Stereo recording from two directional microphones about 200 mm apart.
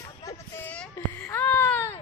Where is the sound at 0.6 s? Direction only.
5° left (ahead or behind).